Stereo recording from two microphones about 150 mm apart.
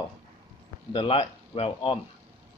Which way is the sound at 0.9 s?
35° left (ahead or behind).